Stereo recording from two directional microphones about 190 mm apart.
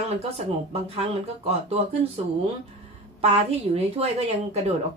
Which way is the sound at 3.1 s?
30° right (ahead or behind).